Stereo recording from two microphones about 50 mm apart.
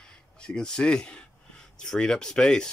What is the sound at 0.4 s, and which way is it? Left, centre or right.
Speech, centre.